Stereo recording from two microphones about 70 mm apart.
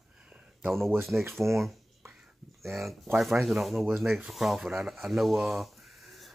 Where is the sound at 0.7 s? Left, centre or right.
Centre.